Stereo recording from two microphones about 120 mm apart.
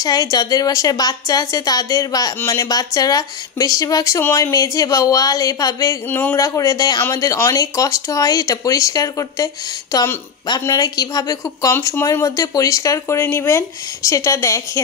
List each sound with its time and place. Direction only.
0.0 s a woman's voice: 30° left (ahead or behind)
6.0 s a man's voice: 15° left (ahead or behind)
6.3 s speech: 25° left (ahead or behind)